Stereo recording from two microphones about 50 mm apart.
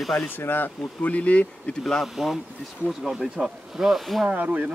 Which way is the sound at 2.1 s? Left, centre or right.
Centre.